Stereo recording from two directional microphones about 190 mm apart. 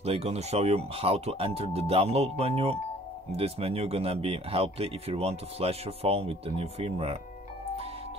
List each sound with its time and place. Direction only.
0.0 s speech: 35° right (ahead or behind)